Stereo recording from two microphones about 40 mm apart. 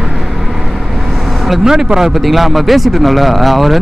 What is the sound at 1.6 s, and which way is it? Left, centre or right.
Speech, centre.